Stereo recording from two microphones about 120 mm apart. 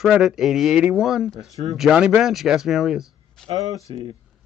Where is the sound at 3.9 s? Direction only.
45° right (ahead or behind).